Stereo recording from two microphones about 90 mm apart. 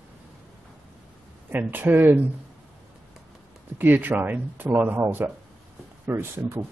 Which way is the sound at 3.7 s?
20° right (ahead or behind).